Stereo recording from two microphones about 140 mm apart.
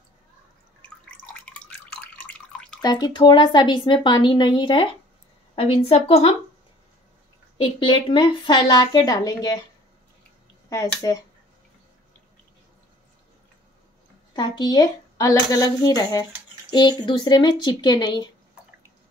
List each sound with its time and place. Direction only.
0.8 s drip: 10° left (ahead or behind)
2.8 s a woman's voice: 30° left (ahead or behind); by 6.3 s 45° left (ahead or behind)
7.5 s a woman's voice: 40° left (ahead or behind)
10.7 s speech: 25° left (ahead or behind)
14.3 s a woman's voice: 30° left (ahead or behind)